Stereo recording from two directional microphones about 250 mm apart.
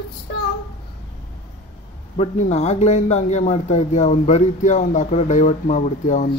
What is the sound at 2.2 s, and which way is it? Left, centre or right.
Speech, left.